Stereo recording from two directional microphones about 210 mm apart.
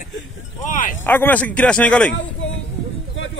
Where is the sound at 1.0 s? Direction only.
10° left (ahead or behind).